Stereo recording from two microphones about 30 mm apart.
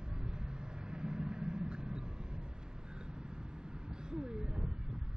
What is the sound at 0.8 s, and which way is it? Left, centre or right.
Vehicle, right.